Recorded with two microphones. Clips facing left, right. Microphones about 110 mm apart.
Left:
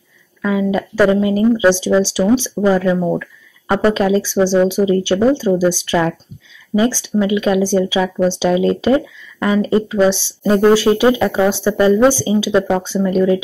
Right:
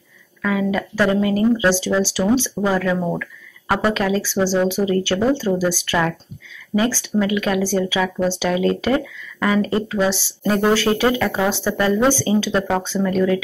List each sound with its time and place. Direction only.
0.4 s speech: 20° left (ahead or behind)